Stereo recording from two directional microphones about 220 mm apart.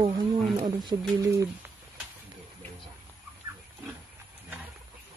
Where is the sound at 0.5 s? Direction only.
20° right (ahead or behind).